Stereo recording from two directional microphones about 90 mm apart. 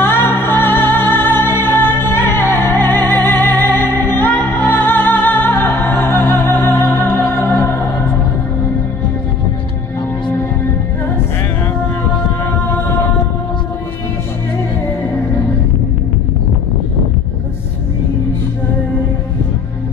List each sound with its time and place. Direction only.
0.0 s music: 25° left (ahead or behind)